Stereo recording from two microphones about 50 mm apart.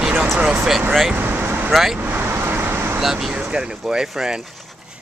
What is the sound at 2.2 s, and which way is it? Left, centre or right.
Vehicle, right.